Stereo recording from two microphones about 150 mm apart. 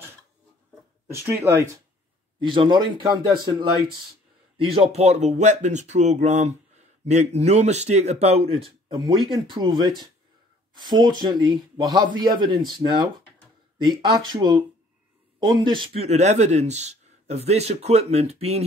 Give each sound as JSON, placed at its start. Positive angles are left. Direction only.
{"t": 1.1, "sound": "speech", "side_deg": -15}
{"t": 2.4, "sound": "speech", "side_deg": -35}
{"t": 4.6, "sound": "a man's voice", "side_deg": -35}